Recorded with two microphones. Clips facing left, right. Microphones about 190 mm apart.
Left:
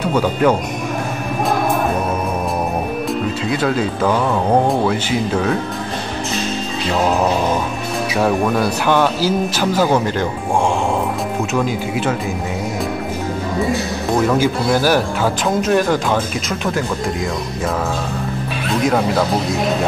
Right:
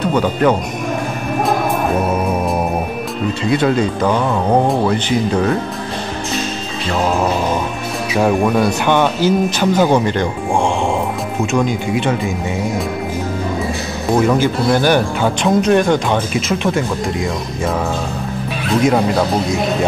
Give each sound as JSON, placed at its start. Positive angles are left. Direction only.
{"t": 0.0, "sound": "speech", "side_deg": 5}
{"t": 3.4, "sound": "speech", "side_deg": 0}
{"t": 6.9, "sound": "speech", "side_deg": 0}
{"t": 11.5, "sound": "speech", "side_deg": 5}
{"t": 14.1, "sound": "speech", "side_deg": 0}
{"t": 18.8, "sound": "speech", "side_deg": 0}